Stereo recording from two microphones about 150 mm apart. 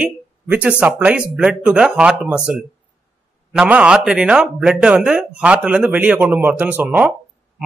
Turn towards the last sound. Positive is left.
turn(degrees=-10)  # may be behind; listen again after turning